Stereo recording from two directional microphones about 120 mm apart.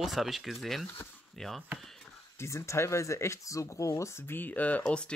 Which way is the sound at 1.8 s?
Centre (ahead or behind).